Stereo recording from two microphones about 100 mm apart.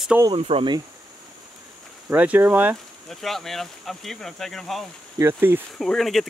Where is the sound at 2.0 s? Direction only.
15° right (ahead or behind).